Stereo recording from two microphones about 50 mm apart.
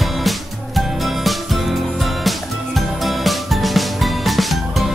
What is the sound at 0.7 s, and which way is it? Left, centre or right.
Music, centre.